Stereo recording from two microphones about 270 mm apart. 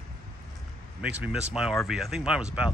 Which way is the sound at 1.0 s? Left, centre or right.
Centre.